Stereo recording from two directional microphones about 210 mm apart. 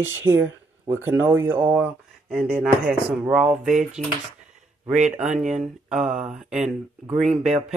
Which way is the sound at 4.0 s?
35° right (ahead or behind).